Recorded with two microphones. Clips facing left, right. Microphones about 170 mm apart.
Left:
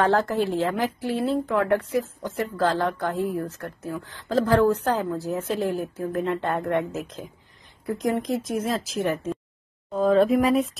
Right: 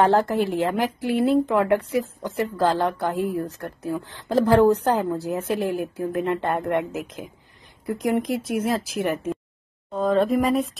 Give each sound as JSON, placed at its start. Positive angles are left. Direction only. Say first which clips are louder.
{"t": 0.0, "sound": "speech", "louder": "right 2 dB", "side_deg": -15}
{"t": 8.3, "sound": "speech", "louder": "right 2 dB", "side_deg": -10}
{"t": 9.9, "sound": "speech", "louder": "left 1 dB", "side_deg": 0}